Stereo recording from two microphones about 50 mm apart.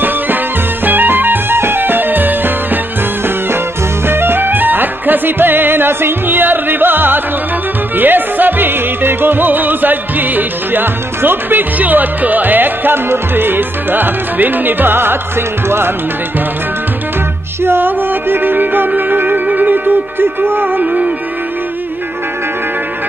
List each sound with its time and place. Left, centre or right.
0.8 s music: right
4.1 s music: right
17.6 s music: right
20.8 s music: right